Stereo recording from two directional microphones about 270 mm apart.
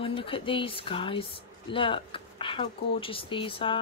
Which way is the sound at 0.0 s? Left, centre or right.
Centre.